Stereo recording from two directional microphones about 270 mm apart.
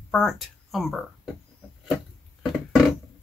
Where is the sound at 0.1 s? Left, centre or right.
Centre.